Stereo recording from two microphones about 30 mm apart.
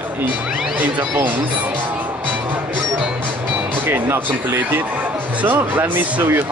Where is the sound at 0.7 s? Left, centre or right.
Right.